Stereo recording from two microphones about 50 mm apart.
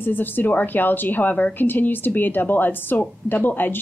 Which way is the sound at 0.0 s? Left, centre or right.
Left.